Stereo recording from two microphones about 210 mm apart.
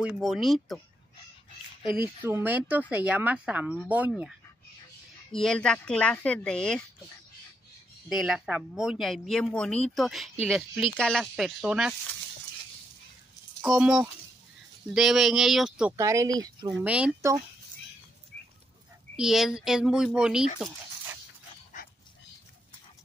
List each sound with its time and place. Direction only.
0.0 s speech: centre (ahead or behind)
2.0 s speech: 10° right (ahead or behind)
5.3 s speech: 5° left (ahead or behind)
8.1 s speech: centre (ahead or behind)
13.6 s speech: 5° right (ahead or behind)
16.0 s speech: 15° right (ahead or behind)
16.6 s speech: 5° right (ahead or behind)
19.1 s speech: centre (ahead or behind)
20.5 s a sound: centre (ahead or behind)